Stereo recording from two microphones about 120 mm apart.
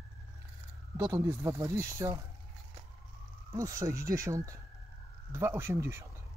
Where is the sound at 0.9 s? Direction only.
25° right (ahead or behind).